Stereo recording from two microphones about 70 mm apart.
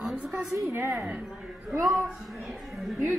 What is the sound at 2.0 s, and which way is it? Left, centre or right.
Speech, centre.